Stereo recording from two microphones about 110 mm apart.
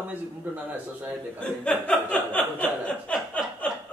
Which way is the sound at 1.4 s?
10° left (ahead or behind).